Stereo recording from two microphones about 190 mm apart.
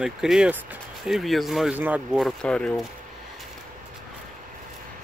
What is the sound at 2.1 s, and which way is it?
Speech, 5° left (ahead or behind).